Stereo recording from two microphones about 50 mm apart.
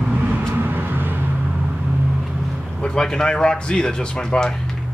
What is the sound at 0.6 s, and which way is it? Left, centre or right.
Vehicle, right.